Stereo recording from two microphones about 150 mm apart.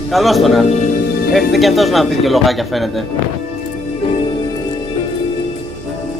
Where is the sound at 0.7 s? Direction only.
50° left (ahead or behind).